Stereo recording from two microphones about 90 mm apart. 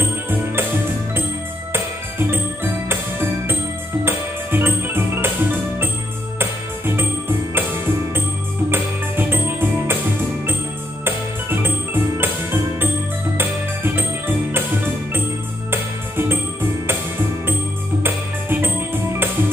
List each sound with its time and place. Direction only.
1.7 s music: 25° right (ahead or behind)
7.0 s music: 25° right (ahead or behind)
8.6 s music: 25° right (ahead or behind)
11.1 s music: 25° right (ahead or behind)
18.0 s music: 25° right (ahead or behind)